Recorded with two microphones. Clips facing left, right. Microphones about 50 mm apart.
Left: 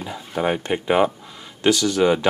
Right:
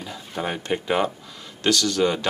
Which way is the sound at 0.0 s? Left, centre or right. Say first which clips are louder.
Left 6 dB; centre.